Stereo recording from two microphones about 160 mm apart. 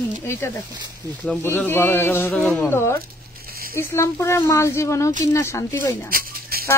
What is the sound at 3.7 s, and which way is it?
A woman's voice, 15° left (ahead or behind).